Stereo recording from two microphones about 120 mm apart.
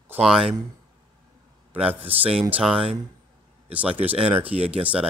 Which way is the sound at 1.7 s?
15° right (ahead or behind).